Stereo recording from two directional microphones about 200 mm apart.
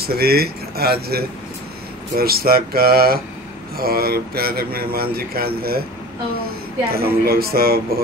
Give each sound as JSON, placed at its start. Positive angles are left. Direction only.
{"t": 0.0, "sound": "a man's voice", "side_deg": -50}
{"t": 6.9, "sound": "a man's voice", "side_deg": -50}